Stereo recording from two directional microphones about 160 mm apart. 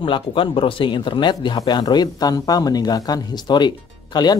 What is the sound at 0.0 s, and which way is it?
Speech, 30° left (ahead or behind).